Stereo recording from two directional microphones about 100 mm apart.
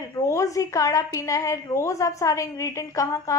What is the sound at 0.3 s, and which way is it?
A woman's voice, 30° left (ahead or behind).